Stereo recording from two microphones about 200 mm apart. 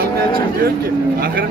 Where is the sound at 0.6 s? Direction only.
50° right (ahead or behind).